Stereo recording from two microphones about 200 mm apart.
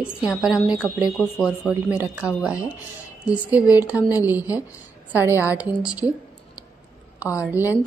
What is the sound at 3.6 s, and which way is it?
Speech, 15° left (ahead or behind).